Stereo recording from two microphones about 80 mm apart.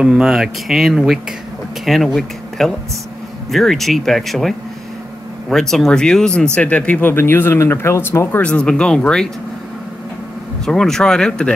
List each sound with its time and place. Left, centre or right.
0.0 s speech: centre; by 8.4 s left
8.4 s speech: centre
10.6 s speech: centre